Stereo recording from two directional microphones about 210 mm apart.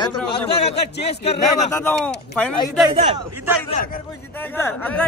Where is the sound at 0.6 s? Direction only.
30° left (ahead or behind).